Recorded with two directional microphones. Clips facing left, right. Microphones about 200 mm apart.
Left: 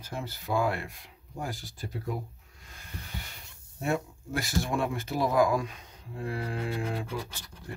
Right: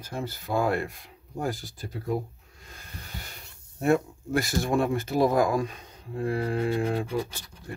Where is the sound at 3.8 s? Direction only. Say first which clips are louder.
Right 7 dB; 50° right (ahead or behind).